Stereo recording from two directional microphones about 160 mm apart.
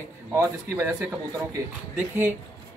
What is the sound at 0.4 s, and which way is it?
Speech, 20° right (ahead or behind).